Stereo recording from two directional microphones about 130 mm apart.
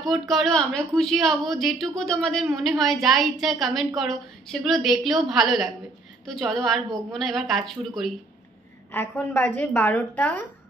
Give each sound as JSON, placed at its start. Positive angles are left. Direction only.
{"t": 0.0, "sound": "a woman's voice", "side_deg": 0}
{"t": 8.9, "sound": "a woman's voice", "side_deg": 20}